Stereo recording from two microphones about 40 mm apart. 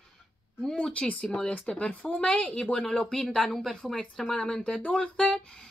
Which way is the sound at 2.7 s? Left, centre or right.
Centre.